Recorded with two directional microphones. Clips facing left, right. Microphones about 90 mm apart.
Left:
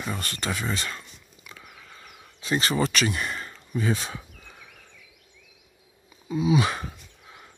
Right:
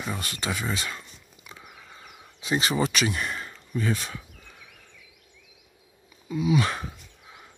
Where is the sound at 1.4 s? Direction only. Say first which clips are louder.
Even; 25° right (ahead or behind); by 3.6 s centre (ahead or behind).